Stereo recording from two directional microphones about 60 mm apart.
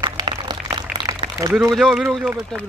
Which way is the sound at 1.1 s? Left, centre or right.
Right.